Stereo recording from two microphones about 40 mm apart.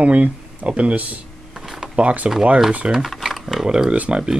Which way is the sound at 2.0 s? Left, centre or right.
Right.